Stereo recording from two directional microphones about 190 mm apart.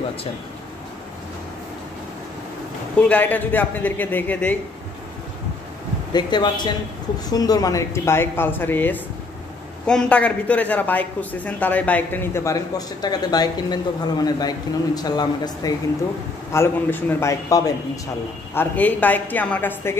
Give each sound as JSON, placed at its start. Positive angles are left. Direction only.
{"t": 3.0, "sound": "a woman's voice", "side_deg": 10}
{"t": 6.1, "sound": "a woman's voice", "side_deg": 20}